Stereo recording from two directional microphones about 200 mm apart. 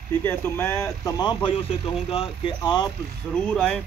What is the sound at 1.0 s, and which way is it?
Speech, 20° left (ahead or behind).